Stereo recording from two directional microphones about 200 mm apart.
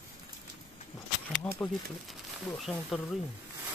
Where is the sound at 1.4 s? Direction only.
10° left (ahead or behind).